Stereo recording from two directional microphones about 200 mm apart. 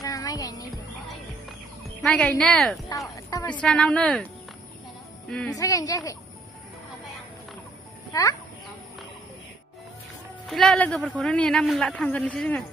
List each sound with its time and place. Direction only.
0.0 s music: 15° left (ahead or behind)
2.0 s a man's voice: 5° left (ahead or behind)
3.1 s music: 15° left (ahead or behind)
3.6 s a man's voice: centre (ahead or behind)
5.5 s speech: 15° left (ahead or behind)
8.1 s a child's voice: 15° left (ahead or behind)
10.4 s a man's voice: centre (ahead or behind)